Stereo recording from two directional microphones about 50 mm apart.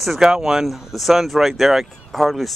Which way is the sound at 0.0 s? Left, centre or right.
Centre.